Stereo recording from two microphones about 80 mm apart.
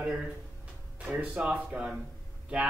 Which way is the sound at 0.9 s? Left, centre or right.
Centre.